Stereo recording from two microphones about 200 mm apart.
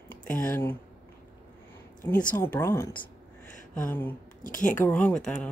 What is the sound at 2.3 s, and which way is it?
Speech, 10° left (ahead or behind).